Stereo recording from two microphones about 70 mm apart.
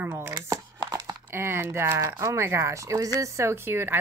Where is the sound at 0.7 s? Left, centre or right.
Right.